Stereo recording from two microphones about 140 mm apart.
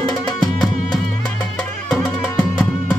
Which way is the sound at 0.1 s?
30° left (ahead or behind).